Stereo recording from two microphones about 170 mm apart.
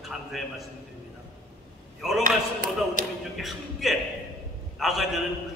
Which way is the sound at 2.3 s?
55° right (ahead or behind).